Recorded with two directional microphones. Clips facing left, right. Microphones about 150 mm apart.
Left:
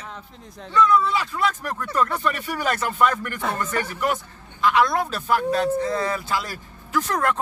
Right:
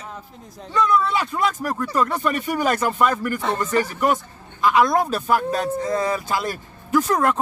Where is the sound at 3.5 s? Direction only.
15° right (ahead or behind).